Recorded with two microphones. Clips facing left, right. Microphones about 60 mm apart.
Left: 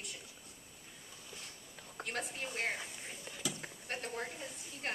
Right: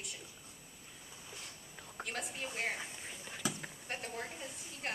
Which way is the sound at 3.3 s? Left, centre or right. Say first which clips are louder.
Right 2 dB; right.